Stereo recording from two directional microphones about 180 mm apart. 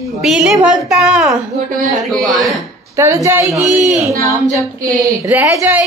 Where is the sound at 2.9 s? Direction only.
15° right (ahead or behind).